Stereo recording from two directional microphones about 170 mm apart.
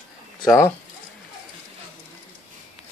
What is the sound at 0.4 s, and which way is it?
Speech, 20° left (ahead or behind).